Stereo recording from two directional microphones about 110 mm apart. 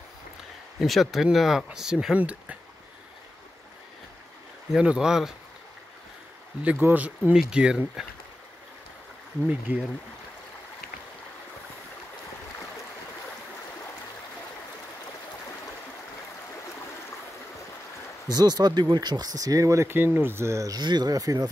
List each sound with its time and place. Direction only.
0.7 s speech: centre (ahead or behind)
4.7 s speech: 5° right (ahead or behind)
6.6 s speech: 15° right (ahead or behind)
9.4 s speech: 15° right (ahead or behind)
18.3 s speech: 40° right (ahead or behind)